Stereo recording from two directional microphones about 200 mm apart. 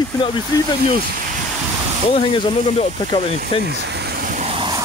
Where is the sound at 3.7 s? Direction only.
55° right (ahead or behind); by 4.8 s 25° right (ahead or behind).